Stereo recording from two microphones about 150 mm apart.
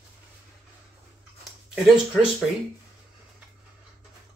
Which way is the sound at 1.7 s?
Centre (ahead or behind).